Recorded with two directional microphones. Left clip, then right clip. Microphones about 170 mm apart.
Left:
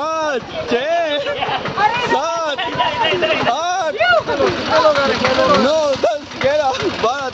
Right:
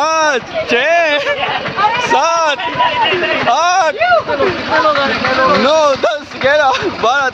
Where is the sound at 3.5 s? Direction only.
5° right (ahead or behind).